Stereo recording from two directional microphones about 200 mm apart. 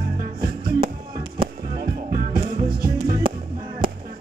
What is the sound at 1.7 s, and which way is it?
Music, 45° right (ahead or behind).